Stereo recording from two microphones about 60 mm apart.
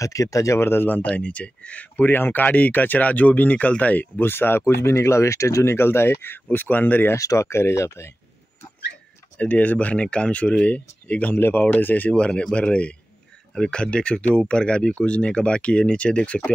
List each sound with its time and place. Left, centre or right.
0.0 s speech: left
0.6 s speech: left
1.1 s speech: left
4.3 s speech: left
7.2 s speech: left
7.4 s speech: left
9.4 s speech: left
11.3 s speech: left
12.1 s speech: centre